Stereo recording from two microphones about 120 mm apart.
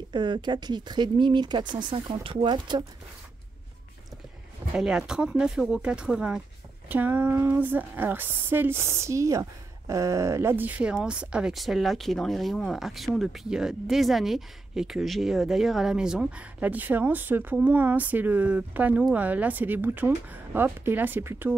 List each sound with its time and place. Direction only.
0.1 s speech: 40° right (ahead or behind)
4.7 s a woman's voice: 5° right (ahead or behind)